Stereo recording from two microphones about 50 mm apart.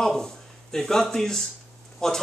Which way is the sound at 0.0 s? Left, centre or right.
Centre.